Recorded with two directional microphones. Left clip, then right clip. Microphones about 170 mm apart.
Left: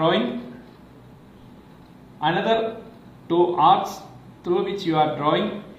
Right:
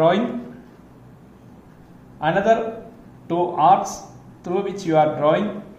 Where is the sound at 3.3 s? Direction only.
55° right (ahead or behind).